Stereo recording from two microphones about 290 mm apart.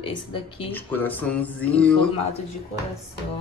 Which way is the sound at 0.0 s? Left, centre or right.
Centre.